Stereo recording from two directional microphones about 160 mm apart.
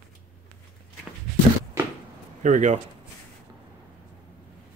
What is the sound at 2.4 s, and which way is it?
Speech, 50° right (ahead or behind).